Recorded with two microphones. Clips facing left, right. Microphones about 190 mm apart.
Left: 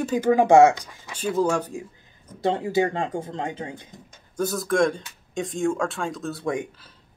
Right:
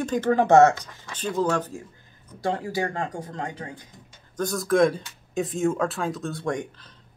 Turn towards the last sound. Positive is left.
turn(degrees=5)  # may be behind; listen again after turning